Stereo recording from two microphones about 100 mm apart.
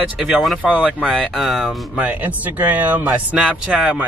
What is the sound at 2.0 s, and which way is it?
Speech, 15° right (ahead or behind).